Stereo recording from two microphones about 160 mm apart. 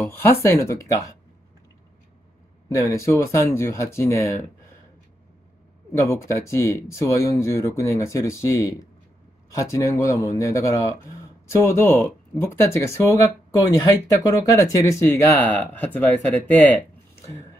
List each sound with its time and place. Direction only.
0.1 s speech: 15° left (ahead or behind)
2.7 s speech: 20° left (ahead or behind)
5.9 s speech: 20° left (ahead or behind)